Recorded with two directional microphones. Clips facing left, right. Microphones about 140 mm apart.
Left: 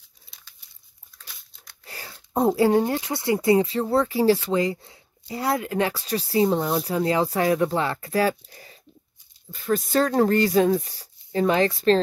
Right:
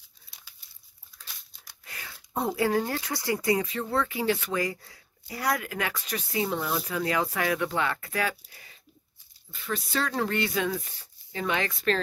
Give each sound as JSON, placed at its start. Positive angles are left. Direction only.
{"t": 1.1, "sound": "crumpling", "side_deg": -10}
{"t": 1.9, "sound": "speech", "side_deg": 35}